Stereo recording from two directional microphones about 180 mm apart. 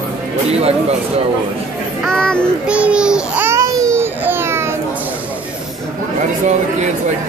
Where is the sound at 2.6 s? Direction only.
5° right (ahead or behind).